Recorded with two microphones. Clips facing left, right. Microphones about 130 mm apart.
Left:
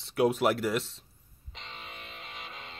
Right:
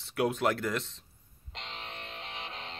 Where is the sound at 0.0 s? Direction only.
Centre (ahead or behind).